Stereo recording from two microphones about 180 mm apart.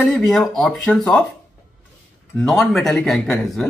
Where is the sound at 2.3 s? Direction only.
Centre (ahead or behind).